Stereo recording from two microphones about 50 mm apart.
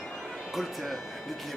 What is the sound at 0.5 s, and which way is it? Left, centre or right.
Speech, centre.